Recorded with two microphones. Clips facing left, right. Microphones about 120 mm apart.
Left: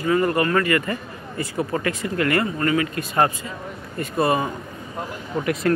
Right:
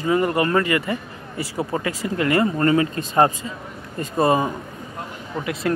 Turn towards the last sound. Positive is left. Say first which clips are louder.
# left 2 dB
turn(degrees=-10)  # may be behind; listen again after turning